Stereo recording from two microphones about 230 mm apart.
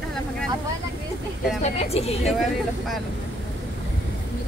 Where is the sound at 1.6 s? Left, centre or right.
Left.